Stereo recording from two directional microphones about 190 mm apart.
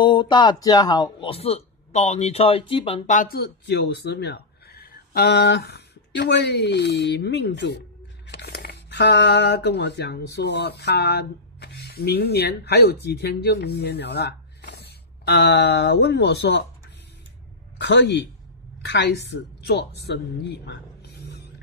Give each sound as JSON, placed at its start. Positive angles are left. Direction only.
{"t": 0.0, "sound": "speech", "side_deg": 25}
{"t": 3.1, "sound": "speech", "side_deg": 50}
{"t": 17.7, "sound": "a woman's voice", "side_deg": 65}